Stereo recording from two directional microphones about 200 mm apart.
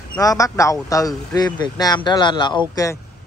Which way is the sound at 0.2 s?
15° left (ahead or behind).